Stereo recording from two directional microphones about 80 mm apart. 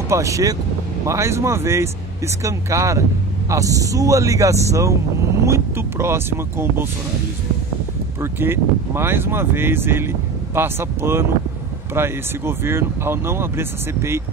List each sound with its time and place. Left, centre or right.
0.1 s speech: right
8.2 s speech: right